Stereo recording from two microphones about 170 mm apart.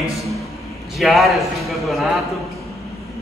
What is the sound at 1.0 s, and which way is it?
A man's voice, centre (ahead or behind).